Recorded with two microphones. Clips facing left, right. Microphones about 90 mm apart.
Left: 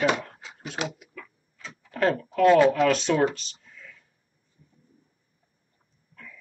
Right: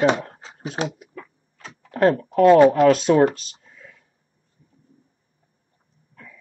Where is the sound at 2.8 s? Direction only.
40° right (ahead or behind).